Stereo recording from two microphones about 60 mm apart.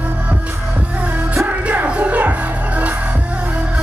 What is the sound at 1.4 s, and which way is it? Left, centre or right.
Music, right.